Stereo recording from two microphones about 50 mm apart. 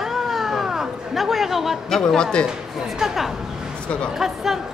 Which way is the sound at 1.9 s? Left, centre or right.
Centre.